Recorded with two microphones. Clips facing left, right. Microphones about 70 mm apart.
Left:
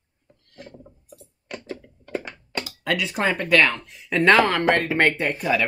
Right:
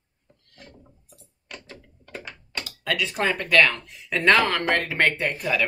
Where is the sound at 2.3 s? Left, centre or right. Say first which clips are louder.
Left 4 dB; centre.